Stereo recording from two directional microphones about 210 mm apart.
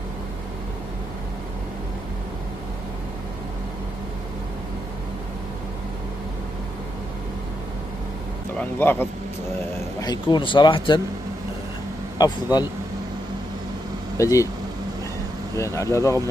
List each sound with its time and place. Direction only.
8.5 s a man's voice: 10° left (ahead or behind)
12.2 s a man's voice: 20° left (ahead or behind)
14.1 s speech: 15° left (ahead or behind)
15.5 s speech: 15° left (ahead or behind)